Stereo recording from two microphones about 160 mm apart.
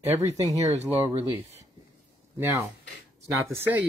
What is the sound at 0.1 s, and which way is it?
Speech, 20° right (ahead or behind).